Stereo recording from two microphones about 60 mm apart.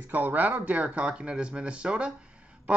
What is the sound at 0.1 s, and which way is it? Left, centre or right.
A man's voice, right.